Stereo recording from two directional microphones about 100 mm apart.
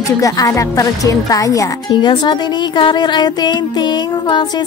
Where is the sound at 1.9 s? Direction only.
50° left (ahead or behind).